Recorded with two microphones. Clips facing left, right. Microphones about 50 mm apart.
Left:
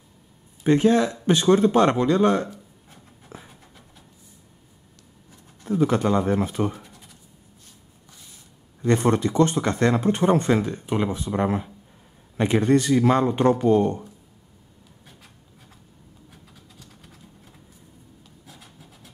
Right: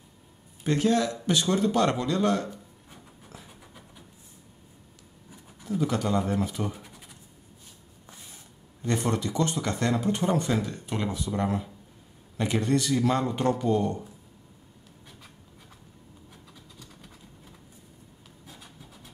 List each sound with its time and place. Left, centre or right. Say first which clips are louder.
0.7 s speech: left 6 dB; left
3.3 s a sound: left 6 dB; left
5.7 s speech: left 6 dB; left
6.8 s scratch: left 1 dB; centre
8.8 s speech: left 7 dB; left
10.7 s speech: left 6 dB; left